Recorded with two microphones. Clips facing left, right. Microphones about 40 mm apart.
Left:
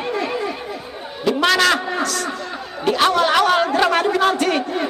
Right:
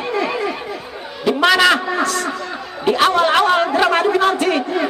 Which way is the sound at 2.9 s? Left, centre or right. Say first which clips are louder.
Right 2 dB; right.